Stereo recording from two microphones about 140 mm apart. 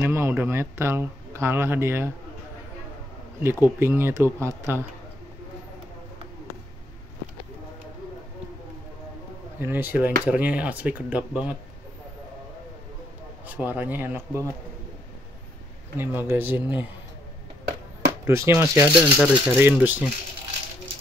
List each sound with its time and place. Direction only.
0.0 s a man's voice: 20° right (ahead or behind)
3.4 s speech: 15° right (ahead or behind)
9.6 s speech: 15° right (ahead or behind)
13.5 s speech: 10° right (ahead or behind)
16.0 s speech: 15° right (ahead or behind)
18.2 s speech: 20° right (ahead or behind)